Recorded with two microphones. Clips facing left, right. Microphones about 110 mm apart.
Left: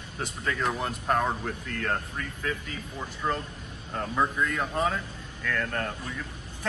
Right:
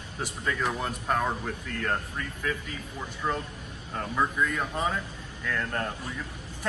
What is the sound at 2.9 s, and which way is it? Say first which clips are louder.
Speech: left 1 dB; centre (ahead or behind).